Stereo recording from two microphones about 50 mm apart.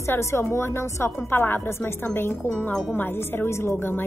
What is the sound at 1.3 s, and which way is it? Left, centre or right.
Speech, left.